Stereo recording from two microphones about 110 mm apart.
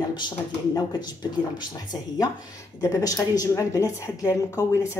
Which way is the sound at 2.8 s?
30° left (ahead or behind).